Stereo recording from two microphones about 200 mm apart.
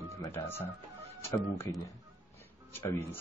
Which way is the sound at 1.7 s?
15° left (ahead or behind).